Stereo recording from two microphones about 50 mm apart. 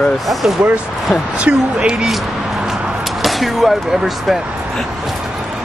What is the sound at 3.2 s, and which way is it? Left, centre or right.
Speech, centre.